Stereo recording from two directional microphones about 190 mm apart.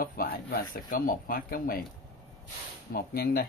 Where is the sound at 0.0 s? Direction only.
50° left (ahead or behind).